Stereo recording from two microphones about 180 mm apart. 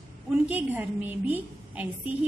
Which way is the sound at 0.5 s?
10° right (ahead or behind).